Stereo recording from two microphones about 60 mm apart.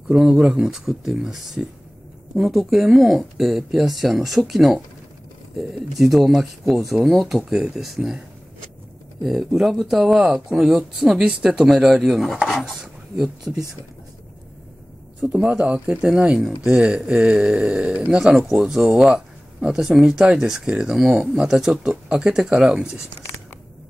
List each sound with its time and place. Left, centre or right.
0.1 s speech: centre
9.2 s speech: centre
11.6 s speech: centre
15.1 s speech: centre
16.3 s speech: centre
16.7 s speech: centre